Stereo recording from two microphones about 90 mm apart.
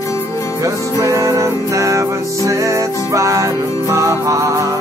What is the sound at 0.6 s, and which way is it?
Music, 35° right (ahead or behind).